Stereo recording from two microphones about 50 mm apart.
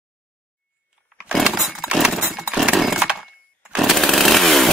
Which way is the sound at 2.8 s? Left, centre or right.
Centre.